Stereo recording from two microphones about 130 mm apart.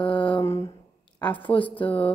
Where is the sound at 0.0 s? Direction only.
40° left (ahead or behind).